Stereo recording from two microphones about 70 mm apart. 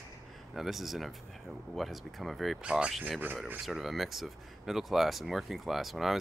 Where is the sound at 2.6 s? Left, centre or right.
Centre.